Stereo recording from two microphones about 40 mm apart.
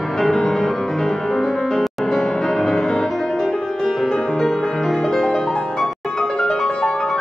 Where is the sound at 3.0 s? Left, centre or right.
Centre.